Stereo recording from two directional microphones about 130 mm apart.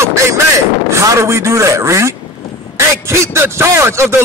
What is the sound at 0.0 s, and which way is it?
Vehicle, 20° right (ahead or behind).